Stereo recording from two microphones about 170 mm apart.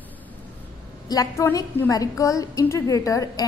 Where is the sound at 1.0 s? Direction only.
20° left (ahead or behind).